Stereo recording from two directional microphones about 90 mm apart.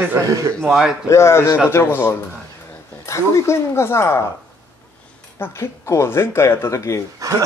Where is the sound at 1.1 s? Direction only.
30° left (ahead or behind).